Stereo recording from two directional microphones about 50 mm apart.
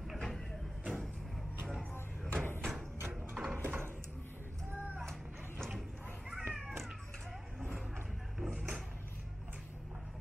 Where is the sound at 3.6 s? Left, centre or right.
Right.